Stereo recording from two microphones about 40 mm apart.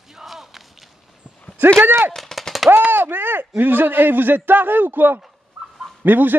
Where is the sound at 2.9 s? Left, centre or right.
Right.